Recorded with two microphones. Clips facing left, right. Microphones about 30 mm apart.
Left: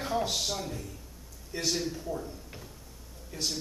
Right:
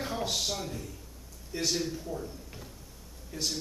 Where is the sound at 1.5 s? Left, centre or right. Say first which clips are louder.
Even; centre.